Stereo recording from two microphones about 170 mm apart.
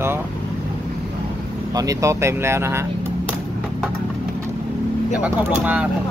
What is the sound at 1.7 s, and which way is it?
Speech, 20° right (ahead or behind).